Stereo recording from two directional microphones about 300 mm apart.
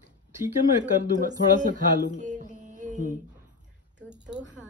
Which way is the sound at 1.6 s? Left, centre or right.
Right.